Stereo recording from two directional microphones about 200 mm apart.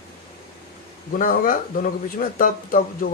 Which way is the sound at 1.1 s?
45° left (ahead or behind).